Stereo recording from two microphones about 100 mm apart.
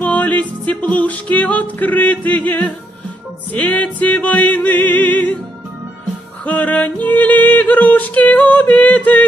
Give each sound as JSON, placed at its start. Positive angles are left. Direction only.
{"t": 0.0, "sound": "music", "side_deg": 15}
{"t": 6.4, "sound": "music", "side_deg": 15}